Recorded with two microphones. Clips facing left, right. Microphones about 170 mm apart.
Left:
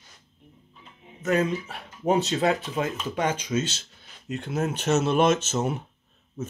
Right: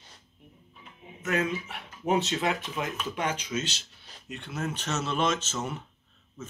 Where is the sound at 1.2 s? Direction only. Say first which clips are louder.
Left 5 dB; 35° left (ahead or behind).